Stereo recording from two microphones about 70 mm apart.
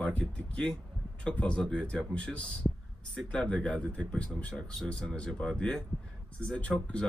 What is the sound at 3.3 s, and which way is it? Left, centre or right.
Speech, centre.